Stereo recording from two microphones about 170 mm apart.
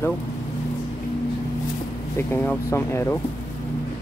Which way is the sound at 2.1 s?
15° left (ahead or behind).